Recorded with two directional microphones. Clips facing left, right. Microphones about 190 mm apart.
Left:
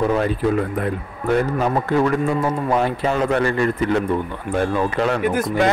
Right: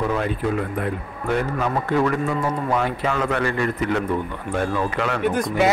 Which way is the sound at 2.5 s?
30° left (ahead or behind).